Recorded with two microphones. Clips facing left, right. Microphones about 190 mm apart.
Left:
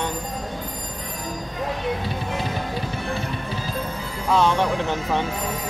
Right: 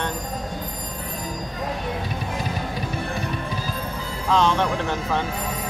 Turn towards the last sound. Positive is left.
turn(degrees=10)  # may be behind; listen again after turning